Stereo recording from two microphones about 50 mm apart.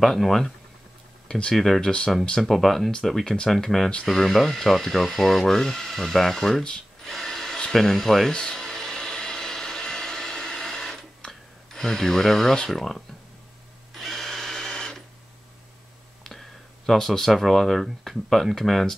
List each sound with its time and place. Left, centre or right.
0.0 s speech: centre
2.4 s speech: centre
8.3 s a sound: centre
13.9 s printer: centre
14.7 s a sound: centre
16.3 s speech: centre